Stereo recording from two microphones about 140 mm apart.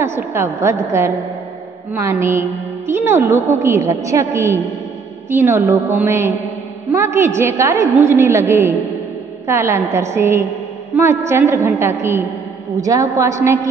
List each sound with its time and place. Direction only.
0.0 s a woman's voice: 15° right (ahead or behind)